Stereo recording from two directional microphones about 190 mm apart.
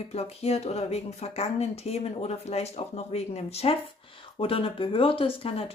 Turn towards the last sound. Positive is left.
turn(degrees=30)  # may be behind; listen again after turning